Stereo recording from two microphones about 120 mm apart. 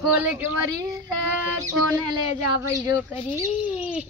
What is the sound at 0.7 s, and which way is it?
Child singing, 30° right (ahead or behind).